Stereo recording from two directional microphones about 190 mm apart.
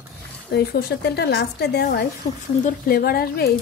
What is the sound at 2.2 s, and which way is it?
Speech, 35° left (ahead or behind).